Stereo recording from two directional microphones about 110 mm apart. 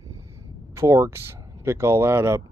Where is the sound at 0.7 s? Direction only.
25° right (ahead or behind).